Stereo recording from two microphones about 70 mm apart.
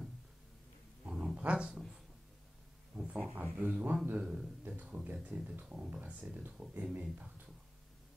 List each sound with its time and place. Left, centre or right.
1.0 s dog: centre
3.0 s a sound: right
3.5 s speech: right